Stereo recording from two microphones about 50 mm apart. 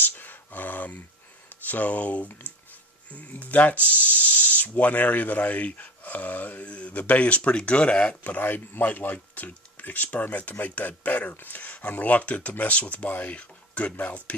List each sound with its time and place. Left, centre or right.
0.0 s a sound: left
1.5 s speech: left
4.1 s hiss: left
4.6 s speech: left
8.4 s speech: left